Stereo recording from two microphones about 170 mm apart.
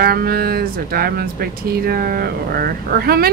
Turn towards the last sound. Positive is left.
turn(degrees=-65)  # may be behind; listen again after turning